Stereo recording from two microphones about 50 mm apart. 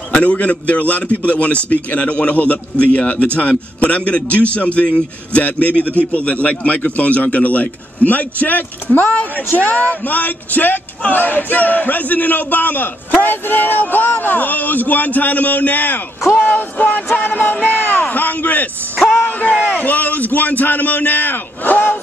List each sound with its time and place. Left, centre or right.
0.1 s a man's voice: left